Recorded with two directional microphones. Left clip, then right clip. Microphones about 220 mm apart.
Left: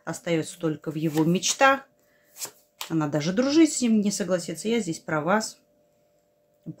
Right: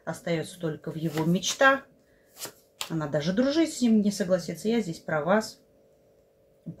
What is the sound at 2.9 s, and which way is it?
Speech, 30° left (ahead or behind).